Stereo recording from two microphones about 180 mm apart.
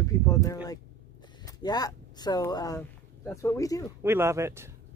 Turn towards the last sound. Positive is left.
turn(degrees=-15)  # may be behind; listen again after turning